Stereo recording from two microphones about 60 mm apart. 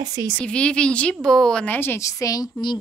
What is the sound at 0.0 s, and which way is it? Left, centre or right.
Speech, right.